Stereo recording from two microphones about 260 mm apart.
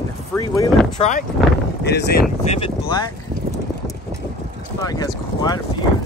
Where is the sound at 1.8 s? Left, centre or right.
Left.